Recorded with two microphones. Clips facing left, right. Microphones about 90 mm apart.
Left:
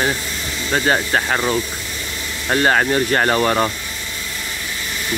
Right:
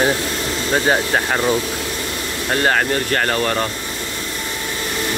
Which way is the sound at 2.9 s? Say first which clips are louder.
Left 2 dB; 20° left (ahead or behind).